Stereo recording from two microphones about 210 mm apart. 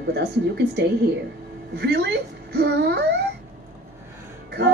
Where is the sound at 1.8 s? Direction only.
50° right (ahead or behind).